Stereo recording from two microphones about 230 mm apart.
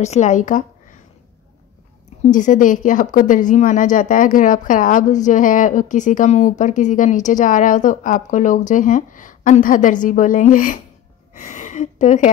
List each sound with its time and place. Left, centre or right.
0.0 s speech: left
2.2 s a woman's voice: left